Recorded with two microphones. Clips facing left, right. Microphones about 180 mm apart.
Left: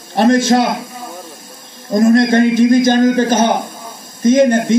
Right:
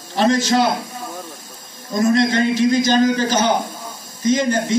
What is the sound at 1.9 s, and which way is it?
A man's voice, 50° left (ahead or behind).